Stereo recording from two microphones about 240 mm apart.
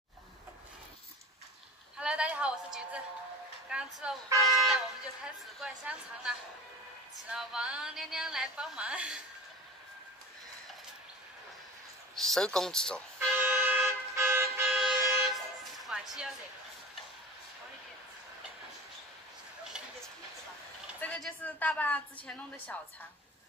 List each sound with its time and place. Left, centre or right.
2.0 s a sound: centre
3.7 s a woman's voice: centre
12.2 s a woman's voice: centre
13.4 s vehicle: centre
15.3 s music: centre
21.0 s a woman's voice: centre